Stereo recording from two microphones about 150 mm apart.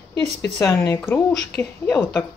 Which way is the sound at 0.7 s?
20° left (ahead or behind).